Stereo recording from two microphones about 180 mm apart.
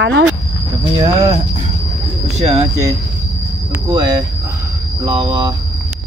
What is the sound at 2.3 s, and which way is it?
Speech, 35° right (ahead or behind).